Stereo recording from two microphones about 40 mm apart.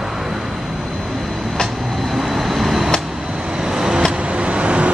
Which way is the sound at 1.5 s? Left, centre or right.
Centre.